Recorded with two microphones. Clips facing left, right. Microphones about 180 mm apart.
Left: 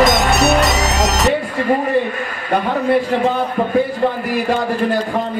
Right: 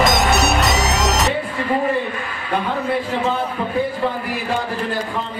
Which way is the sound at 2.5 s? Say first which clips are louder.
Left 5 dB; 45° left (ahead or behind).